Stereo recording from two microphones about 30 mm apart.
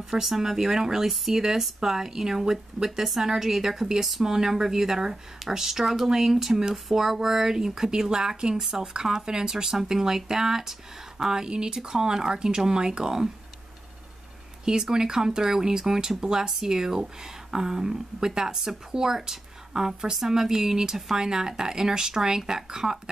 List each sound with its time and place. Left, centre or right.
0.1 s speech: centre
8.5 s speech: centre
14.6 s speech: right